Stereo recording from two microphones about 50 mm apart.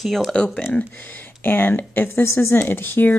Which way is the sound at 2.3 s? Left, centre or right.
Left.